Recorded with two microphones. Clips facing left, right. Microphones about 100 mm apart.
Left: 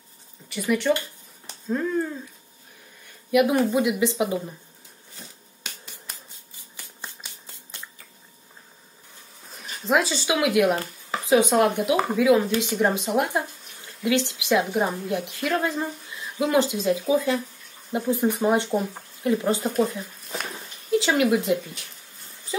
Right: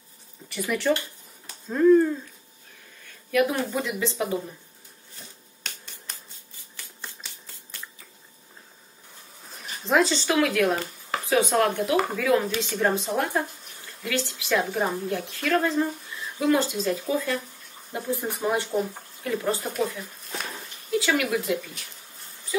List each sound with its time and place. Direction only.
0.5 s speech: centre (ahead or behind)
3.3 s a woman's voice: 15° left (ahead or behind)
5.6 s finger snapping: 5° left (ahead or behind)
7.0 s shuffling cards: 20° left (ahead or behind)
9.5 s a woman's voice: centre (ahead or behind); by 19.7 s 20° left (ahead or behind)
19.7 s speech: 35° left (ahead or behind)
20.9 s speech: 25° left (ahead or behind)
22.5 s a sound: 30° left (ahead or behind)